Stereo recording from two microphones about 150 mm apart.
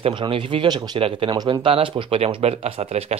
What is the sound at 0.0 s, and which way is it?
Speech, 35° right (ahead or behind).